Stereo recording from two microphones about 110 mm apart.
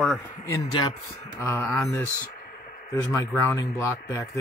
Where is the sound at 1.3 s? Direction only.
25° left (ahead or behind).